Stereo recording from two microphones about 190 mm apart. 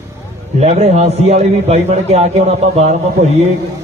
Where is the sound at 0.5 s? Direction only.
35° right (ahead or behind).